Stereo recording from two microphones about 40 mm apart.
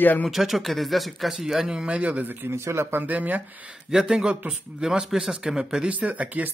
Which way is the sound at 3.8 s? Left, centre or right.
Centre.